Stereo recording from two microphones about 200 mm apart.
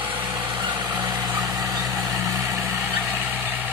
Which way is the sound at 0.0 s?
25° right (ahead or behind).